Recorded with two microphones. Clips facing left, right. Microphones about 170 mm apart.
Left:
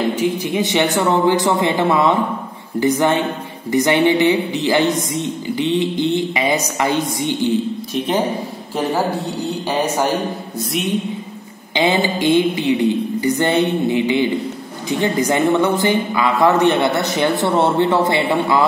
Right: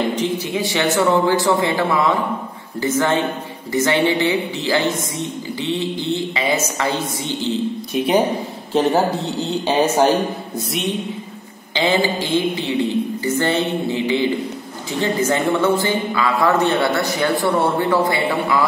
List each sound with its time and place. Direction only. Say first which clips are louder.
0.1 s a man's voice: left 2 dB; 10° left (ahead or behind)
9.7 s speech: right 4 dB; 20° right (ahead or behind)
11.7 s a woman's voice: left 1 dB; 20° left (ahead or behind)